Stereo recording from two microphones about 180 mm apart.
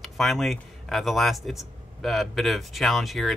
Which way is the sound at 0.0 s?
Centre (ahead or behind).